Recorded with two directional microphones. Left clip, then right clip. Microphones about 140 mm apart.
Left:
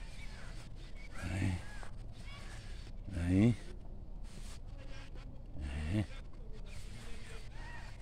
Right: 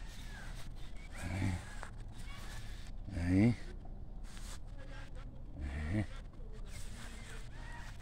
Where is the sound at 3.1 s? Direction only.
25° left (ahead or behind).